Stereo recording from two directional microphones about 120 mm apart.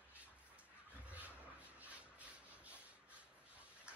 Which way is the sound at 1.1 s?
10° right (ahead or behind).